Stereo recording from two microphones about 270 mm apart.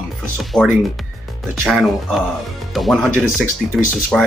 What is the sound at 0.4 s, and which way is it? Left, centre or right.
Speech, centre.